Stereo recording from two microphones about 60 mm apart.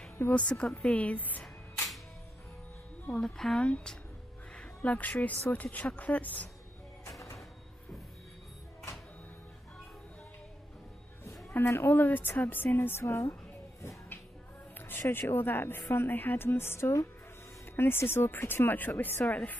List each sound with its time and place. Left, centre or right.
0.3 s a woman's voice: centre
3.2 s a woman's voice: centre; by 6.4 s left
7.1 s music: left
11.6 s a woman's voice: left
11.9 s speech: left
13.0 s a woman's voice: left
15.0 s a woman's voice: left